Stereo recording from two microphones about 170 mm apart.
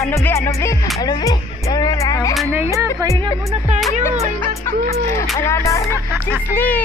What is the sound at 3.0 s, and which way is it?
Speech, 20° right (ahead or behind).